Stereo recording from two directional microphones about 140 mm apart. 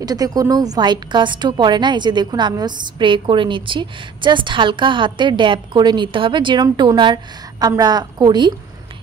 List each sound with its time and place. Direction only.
0.0 s a woman's voice: 25° right (ahead or behind)